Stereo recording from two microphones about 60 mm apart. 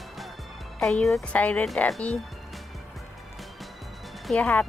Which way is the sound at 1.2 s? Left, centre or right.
Left.